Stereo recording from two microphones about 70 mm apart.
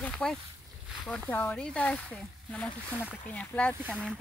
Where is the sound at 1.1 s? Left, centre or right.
Left.